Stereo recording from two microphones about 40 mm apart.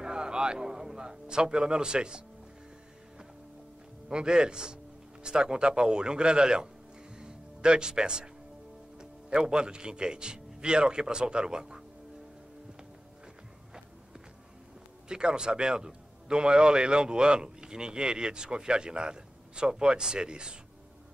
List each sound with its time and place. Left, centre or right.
0.0 s a man's voice: right
4.1 s a man's voice: right
7.2 s music: right
8.9 s a man's voice: centre
15.0 s a man's voice: right